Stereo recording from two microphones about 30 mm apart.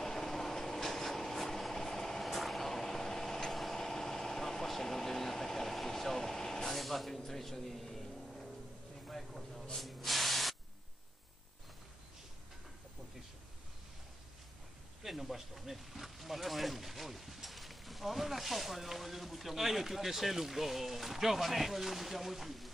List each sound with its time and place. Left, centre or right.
0.0 s vehicle: centre
2.2 s vehicle: centre
7.2 s speech: centre
9.0 s a sound: centre
9.8 s spray: centre
15.0 s speech: centre